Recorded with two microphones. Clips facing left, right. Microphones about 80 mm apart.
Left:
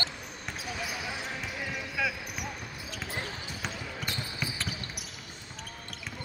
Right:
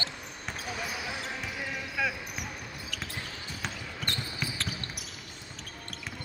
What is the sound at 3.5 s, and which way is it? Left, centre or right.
Basketball bounce, centre.